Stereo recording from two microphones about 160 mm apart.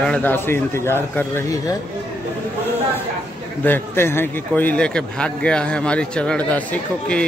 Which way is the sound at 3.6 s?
15° left (ahead or behind).